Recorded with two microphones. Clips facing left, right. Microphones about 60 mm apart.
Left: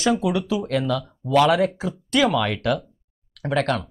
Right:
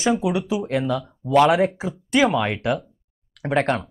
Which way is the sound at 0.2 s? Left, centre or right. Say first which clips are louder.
Even; centre.